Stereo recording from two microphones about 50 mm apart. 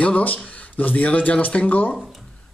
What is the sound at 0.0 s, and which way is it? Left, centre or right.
Speech, left.